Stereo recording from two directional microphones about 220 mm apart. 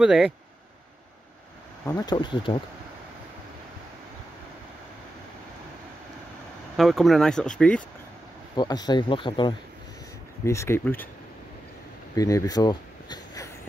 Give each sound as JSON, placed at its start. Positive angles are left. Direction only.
{"t": 0.0, "sound": "speech", "side_deg": -5}
{"t": 1.9, "sound": "speech", "side_deg": 15}
{"t": 6.8, "sound": "speech", "side_deg": 0}
{"t": 8.5, "sound": "speech", "side_deg": 20}
{"t": 12.2, "sound": "speech", "side_deg": 15}